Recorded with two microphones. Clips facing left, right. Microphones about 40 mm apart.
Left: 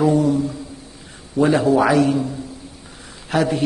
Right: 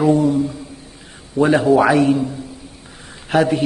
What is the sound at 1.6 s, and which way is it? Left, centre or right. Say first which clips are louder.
Speech: right 2 dB; centre.